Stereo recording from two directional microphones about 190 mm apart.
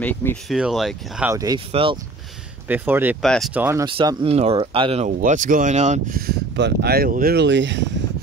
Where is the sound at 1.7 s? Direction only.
30° right (ahead or behind).